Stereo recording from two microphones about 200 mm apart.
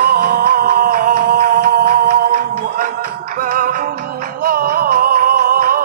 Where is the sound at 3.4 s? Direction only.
45° right (ahead or behind).